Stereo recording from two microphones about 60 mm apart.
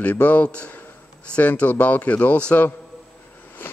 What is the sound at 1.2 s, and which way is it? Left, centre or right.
Speech, centre.